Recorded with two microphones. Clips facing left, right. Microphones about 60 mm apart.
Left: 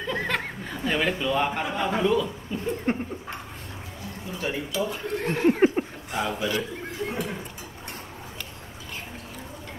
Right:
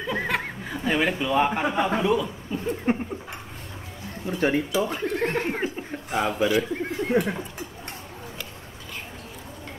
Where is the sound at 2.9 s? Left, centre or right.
Centre.